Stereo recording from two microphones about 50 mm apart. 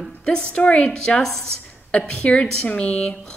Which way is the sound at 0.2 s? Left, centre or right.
Centre.